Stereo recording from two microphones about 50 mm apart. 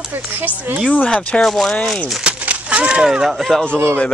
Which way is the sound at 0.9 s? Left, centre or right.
Centre.